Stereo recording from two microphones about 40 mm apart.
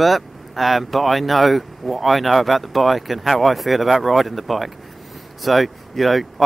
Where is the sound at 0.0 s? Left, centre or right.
Centre.